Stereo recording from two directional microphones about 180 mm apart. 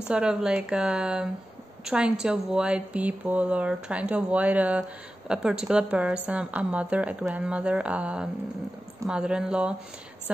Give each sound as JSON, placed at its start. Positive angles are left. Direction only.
{"t": 0.1, "sound": "speech", "side_deg": -5}